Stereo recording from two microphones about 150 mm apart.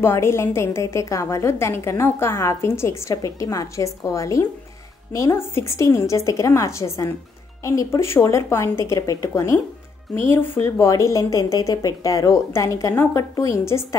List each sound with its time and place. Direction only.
0.0 s a woman's voice: 15° left (ahead or behind)